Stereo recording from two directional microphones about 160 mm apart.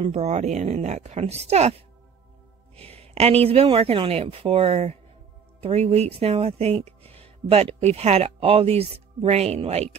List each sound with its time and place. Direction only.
0.0 s a woman's voice: 40° right (ahead or behind)
2.7 s a sound: 40° right (ahead or behind)
3.4 s a woman's voice: 35° right (ahead or behind)